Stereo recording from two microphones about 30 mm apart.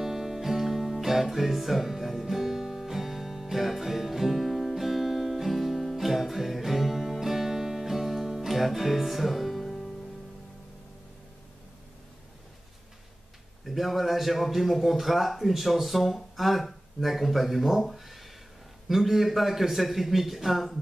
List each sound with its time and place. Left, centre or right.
0.0 s music: centre
13.7 s a man's voice: centre
17.9 s a sound: centre
18.9 s a man's voice: centre